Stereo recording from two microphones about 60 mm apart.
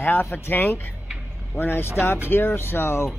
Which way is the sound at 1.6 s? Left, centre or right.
Left.